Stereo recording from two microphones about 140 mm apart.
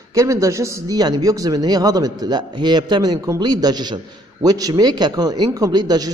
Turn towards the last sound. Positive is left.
turn(degrees=-25)  # may be behind; listen again after turning